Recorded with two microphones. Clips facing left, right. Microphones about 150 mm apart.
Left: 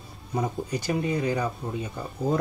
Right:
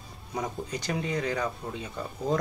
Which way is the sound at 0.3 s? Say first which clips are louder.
Left 4 dB; 5° left (ahead or behind).